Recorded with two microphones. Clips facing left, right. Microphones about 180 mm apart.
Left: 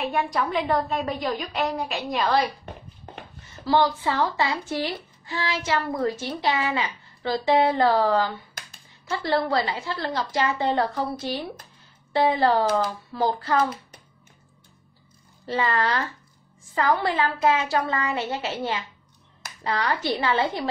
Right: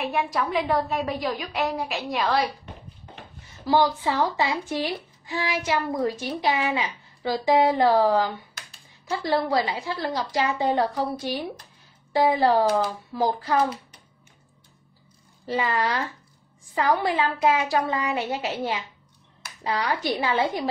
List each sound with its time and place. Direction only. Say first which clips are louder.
0.0 s a woman's voice: left 1 dB; 5° right (ahead or behind)
3.6 s speech: even; 15° right (ahead or behind)
15.4 s speech: even; 15° right (ahead or behind)